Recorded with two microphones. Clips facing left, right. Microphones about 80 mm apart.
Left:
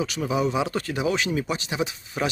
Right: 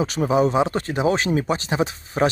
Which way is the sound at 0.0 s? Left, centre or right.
Right.